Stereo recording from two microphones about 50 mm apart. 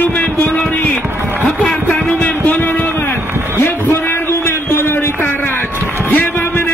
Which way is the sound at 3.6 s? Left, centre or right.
Left.